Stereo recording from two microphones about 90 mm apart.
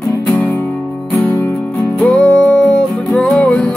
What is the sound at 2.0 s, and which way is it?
Music, 10° left (ahead or behind).